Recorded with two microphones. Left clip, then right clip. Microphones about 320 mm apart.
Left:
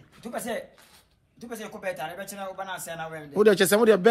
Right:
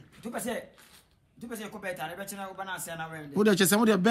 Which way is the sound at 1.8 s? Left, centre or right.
Centre.